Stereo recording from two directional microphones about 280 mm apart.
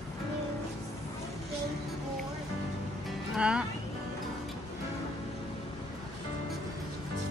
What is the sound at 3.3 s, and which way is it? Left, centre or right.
Speech, centre.